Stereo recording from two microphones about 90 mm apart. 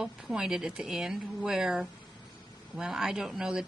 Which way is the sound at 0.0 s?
10° right (ahead or behind).